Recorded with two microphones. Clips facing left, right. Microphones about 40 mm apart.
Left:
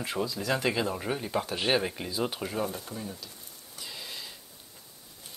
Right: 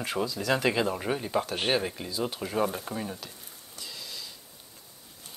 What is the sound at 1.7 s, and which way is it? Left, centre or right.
Speech, centre.